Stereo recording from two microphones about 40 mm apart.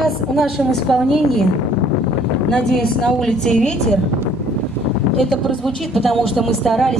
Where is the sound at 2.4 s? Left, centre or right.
Centre.